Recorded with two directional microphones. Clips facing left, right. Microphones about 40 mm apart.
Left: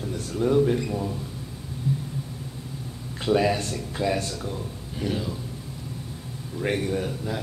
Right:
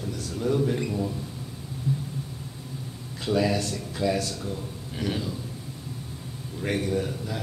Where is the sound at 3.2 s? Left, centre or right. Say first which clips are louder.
Left 2 dB; left.